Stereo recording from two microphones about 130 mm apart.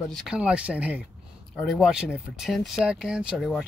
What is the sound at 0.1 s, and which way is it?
Speech, centre (ahead or behind).